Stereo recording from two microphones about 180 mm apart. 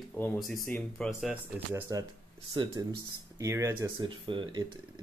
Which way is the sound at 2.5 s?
25° right (ahead or behind).